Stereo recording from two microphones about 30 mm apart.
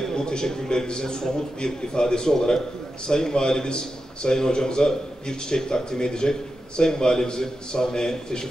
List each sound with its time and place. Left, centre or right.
0.1 s a man's voice: left